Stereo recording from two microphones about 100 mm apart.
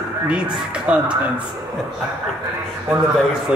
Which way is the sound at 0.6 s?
10° right (ahead or behind).